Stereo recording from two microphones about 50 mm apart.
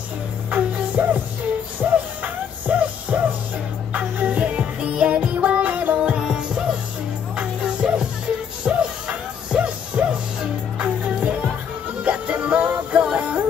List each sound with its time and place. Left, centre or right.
1.0 s music: right